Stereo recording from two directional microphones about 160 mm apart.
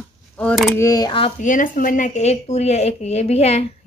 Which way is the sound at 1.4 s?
55° left (ahead or behind).